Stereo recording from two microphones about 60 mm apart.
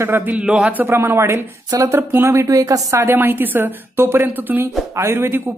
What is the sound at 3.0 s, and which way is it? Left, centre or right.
Speech, right.